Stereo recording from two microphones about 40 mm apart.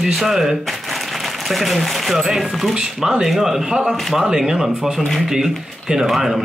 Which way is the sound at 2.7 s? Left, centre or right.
Centre.